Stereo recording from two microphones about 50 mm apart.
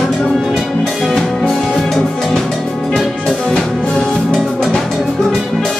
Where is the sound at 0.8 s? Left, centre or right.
Centre.